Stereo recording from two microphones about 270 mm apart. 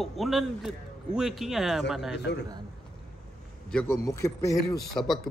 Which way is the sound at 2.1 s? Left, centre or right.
Left.